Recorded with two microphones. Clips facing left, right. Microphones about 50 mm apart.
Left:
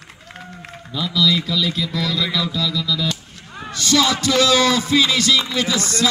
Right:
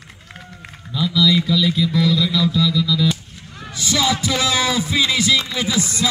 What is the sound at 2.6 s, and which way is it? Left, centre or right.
Music, centre.